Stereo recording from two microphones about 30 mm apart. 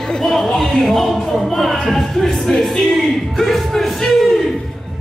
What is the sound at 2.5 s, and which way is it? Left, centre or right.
Speech, left.